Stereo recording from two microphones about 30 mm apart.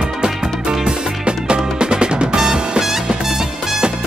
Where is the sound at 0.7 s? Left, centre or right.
Right.